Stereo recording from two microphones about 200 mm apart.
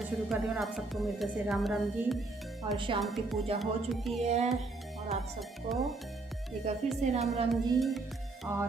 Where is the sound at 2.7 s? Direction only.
25° right (ahead or behind).